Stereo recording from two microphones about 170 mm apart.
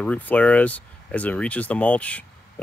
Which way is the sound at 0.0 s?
10° left (ahead or behind).